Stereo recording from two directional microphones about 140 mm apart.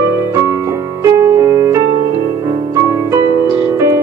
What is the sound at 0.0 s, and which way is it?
Music, 20° right (ahead or behind).